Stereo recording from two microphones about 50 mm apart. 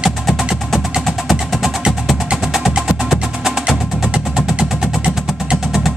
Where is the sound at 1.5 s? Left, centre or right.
Centre.